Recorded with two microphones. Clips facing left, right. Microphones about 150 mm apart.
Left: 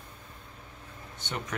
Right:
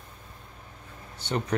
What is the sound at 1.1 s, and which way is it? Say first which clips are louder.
Speech: right 7 dB; 35° right (ahead or behind).